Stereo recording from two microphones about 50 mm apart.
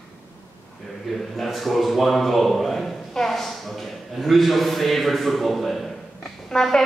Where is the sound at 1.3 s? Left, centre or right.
Centre.